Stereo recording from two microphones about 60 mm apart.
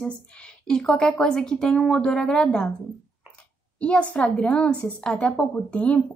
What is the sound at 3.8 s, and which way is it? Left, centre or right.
A woman's voice, left.